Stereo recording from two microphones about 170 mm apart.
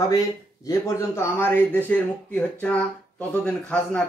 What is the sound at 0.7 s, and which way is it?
Speech, 15° left (ahead or behind).